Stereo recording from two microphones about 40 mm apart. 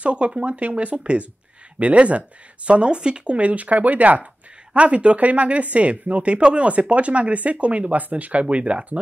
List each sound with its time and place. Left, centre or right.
0.0 s speech: right
0.6 s speech: right